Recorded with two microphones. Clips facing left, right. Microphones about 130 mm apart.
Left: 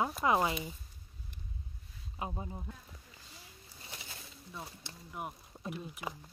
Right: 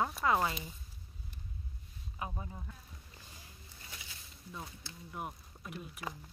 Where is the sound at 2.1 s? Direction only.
25° left (ahead or behind).